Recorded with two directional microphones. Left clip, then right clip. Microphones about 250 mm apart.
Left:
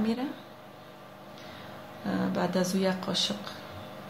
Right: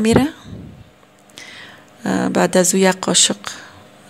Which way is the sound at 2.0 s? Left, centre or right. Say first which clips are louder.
Right 13 dB; right.